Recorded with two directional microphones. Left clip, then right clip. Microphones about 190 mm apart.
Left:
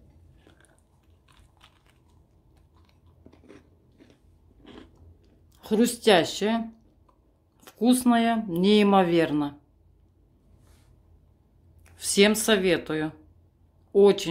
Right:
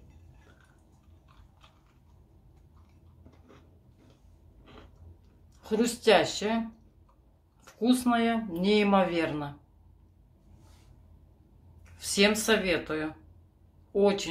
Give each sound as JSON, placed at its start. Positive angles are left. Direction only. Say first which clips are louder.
{"t": 3.3, "sound": "a sound", "louder": "left 6 dB", "side_deg": 45}
{"t": 5.6, "sound": "speech", "louder": "left 4 dB", "side_deg": 50}
{"t": 7.6, "sound": "speech", "louder": "left 4 dB", "side_deg": 50}
{"t": 11.8, "sound": "speech", "louder": "left 4 dB", "side_deg": 50}